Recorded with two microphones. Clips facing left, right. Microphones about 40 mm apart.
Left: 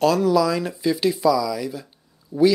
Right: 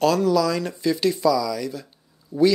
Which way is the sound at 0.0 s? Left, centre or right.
Centre.